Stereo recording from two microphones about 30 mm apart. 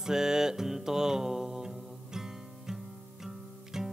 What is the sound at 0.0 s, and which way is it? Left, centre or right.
Music, centre.